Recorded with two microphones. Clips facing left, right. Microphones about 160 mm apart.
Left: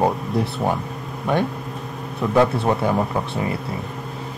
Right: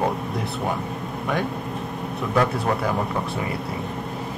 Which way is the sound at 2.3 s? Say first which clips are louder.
Left 4 dB; 25° left (ahead or behind).